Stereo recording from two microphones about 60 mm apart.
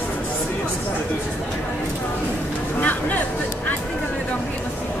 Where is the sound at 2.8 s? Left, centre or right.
Left.